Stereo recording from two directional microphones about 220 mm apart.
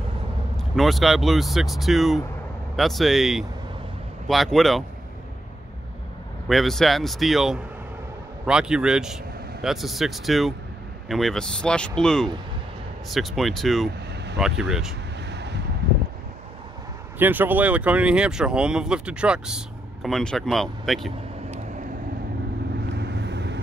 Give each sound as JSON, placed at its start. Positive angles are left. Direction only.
{"t": 0.6, "sound": "speech", "side_deg": 0}
{"t": 6.5, "sound": "speech", "side_deg": 0}
{"t": 15.2, "sound": "a sound", "side_deg": -50}
{"t": 17.2, "sound": "speech", "side_deg": -10}
{"t": 22.9, "sound": "vehicle", "side_deg": -50}